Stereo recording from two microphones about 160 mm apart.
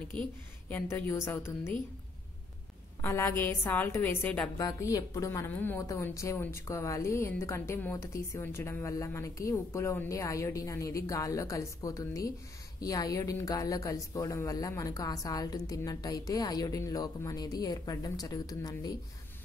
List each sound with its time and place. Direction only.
0.2 s a woman's voice: 10° left (ahead or behind)
3.0 s a woman's voice: 15° left (ahead or behind)
4.6 s a woman's voice: 20° left (ahead or behind)